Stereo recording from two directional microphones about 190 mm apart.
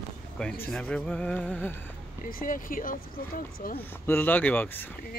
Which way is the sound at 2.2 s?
45° left (ahead or behind).